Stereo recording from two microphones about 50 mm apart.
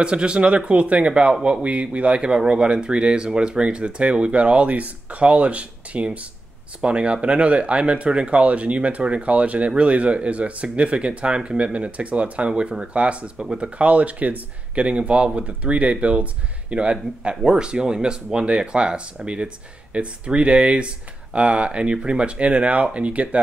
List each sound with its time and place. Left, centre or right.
0.0 s speech: centre